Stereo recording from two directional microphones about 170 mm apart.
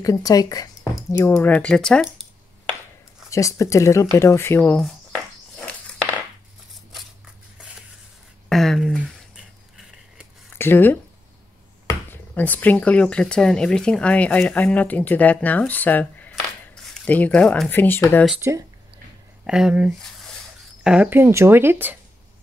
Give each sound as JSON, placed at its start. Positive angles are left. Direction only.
{"t": 0.0, "sound": "speech", "side_deg": 20}
{"t": 3.3, "sound": "speech", "side_deg": 20}
{"t": 8.5, "sound": "a sound", "side_deg": 0}
{"t": 10.6, "sound": "speech", "side_deg": 10}
{"t": 19.4, "sound": "speech", "side_deg": -5}